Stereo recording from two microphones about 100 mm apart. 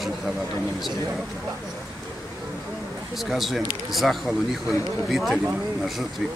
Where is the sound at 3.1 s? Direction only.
Centre (ahead or behind).